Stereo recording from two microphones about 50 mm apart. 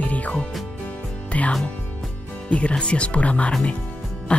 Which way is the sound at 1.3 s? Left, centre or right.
Left.